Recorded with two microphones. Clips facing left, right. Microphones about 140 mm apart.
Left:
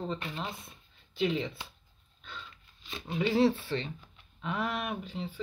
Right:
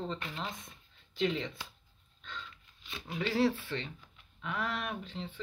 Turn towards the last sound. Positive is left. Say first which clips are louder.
# left 4 dB
turn(degrees=10)  # may be behind; listen again after turning